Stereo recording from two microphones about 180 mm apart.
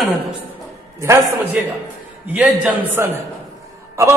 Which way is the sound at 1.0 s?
15° right (ahead or behind).